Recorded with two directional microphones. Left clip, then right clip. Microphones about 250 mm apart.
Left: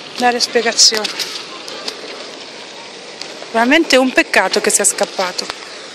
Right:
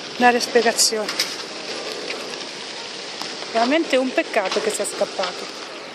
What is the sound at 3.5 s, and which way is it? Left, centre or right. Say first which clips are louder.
Speech: left 7 dB; left.